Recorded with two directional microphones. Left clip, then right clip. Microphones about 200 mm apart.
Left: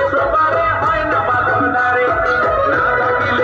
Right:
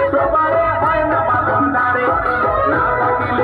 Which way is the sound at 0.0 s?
60° right (ahead or behind).